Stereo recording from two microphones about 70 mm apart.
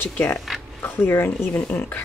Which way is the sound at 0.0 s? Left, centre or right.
Left.